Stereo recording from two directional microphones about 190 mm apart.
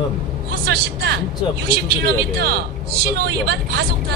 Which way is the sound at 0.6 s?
60° right (ahead or behind).